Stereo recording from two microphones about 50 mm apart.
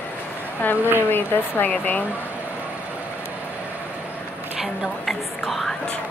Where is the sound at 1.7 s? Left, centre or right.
Left.